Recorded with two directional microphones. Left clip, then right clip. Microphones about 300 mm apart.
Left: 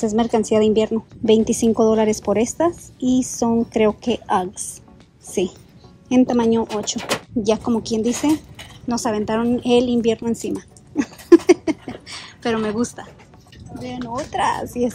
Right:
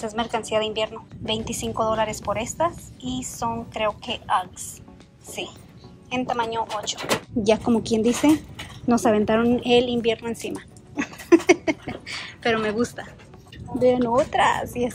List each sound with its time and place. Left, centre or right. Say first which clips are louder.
0.0 s a woman's voice: left 7 dB; centre
6.1 s a woman's voice: left 7 dB; left
7.1 s speech: even; centre
8.0 s speech: even; left
8.8 s a woman's voice: right 2 dB; centre